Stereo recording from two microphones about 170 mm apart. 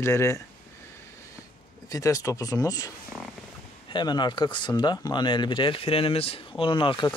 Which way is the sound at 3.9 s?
25° left (ahead or behind).